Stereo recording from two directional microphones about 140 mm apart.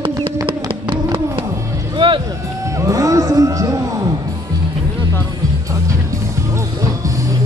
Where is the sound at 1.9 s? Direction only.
35° right (ahead or behind).